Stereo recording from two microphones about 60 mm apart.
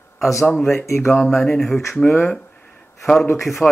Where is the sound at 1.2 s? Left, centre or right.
Centre.